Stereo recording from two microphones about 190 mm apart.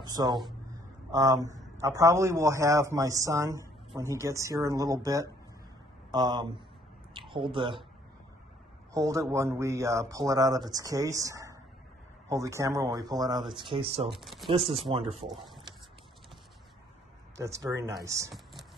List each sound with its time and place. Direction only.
0.0 s a man's voice: 20° right (ahead or behind)
8.9 s a man's voice: 15° right (ahead or behind)
14.1 s speech: centre (ahead or behind)
14.7 s speech: 30° right (ahead or behind)
17.4 s a man's voice: 15° right (ahead or behind)
18.3 s a sound: centre (ahead or behind)